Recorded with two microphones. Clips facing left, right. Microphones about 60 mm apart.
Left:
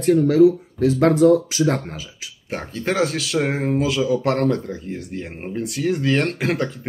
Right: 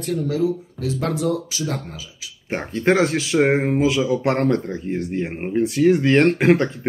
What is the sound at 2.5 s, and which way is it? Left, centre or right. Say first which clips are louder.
Speech: right 5 dB; centre.